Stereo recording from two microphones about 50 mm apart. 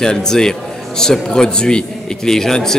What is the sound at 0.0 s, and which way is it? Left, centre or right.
A man's voice, centre.